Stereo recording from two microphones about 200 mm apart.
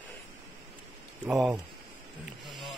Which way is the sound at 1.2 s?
5° right (ahead or behind).